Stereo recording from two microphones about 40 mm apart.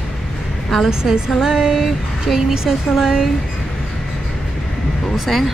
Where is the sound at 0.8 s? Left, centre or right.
Centre.